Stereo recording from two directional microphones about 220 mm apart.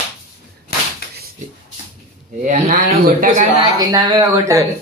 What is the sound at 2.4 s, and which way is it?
Speech, 40° right (ahead or behind).